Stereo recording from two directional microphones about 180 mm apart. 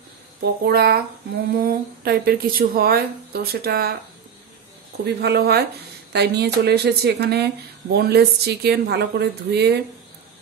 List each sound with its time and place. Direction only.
0.4 s a woman's voice: 60° right (ahead or behind)
5.0 s a woman's voice: 65° right (ahead or behind)